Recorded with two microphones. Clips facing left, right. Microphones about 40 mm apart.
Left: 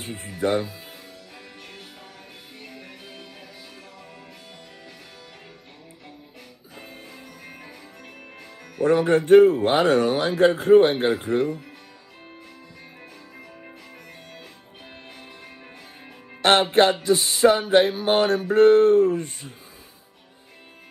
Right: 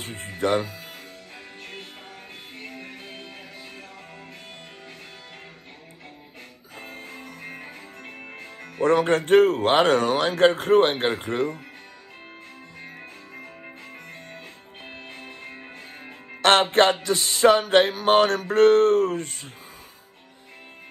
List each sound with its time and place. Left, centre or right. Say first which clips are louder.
0.0 s speech: even; right
1.6 s music: right 3 dB; right
6.8 s music: right 3 dB; right
8.8 s music: left 1 dB; right
15.0 s music: right 3 dB; right
16.4 s music: even; right